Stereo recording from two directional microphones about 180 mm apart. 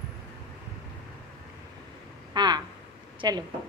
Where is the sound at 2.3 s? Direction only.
25° right (ahead or behind).